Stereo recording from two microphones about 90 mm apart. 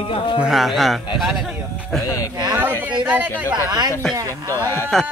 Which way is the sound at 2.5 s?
20° right (ahead or behind).